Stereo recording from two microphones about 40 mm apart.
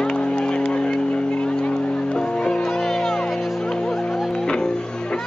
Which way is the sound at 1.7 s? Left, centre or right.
Left.